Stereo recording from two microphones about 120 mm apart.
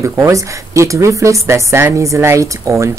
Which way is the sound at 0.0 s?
25° right (ahead or behind).